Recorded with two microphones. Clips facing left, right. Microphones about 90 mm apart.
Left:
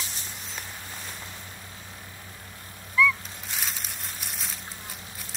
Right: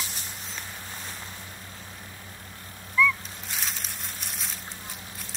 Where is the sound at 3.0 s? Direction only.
Centre (ahead or behind).